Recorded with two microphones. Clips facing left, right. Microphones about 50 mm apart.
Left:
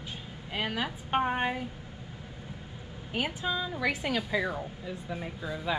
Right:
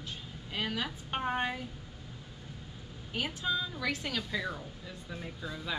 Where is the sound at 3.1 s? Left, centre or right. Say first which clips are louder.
Left 2 dB; centre.